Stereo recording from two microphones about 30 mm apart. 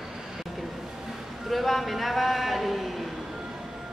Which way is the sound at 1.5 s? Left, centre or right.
Centre.